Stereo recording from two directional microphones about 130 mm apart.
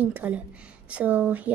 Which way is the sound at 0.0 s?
10° right (ahead or behind).